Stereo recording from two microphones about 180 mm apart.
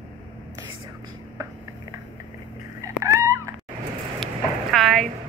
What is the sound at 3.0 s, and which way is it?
Cat, 15° right (ahead or behind).